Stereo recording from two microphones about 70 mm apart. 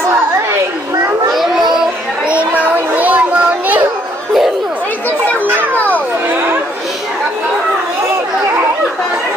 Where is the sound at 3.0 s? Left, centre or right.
Right.